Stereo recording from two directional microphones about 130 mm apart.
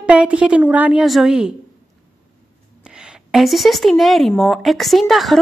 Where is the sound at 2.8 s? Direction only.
5° right (ahead or behind).